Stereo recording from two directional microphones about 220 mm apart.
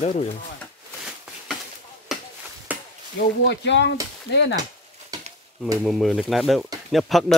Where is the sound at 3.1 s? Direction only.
50° left (ahead or behind).